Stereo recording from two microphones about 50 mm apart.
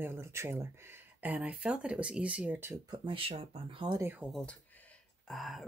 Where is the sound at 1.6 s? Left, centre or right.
Right.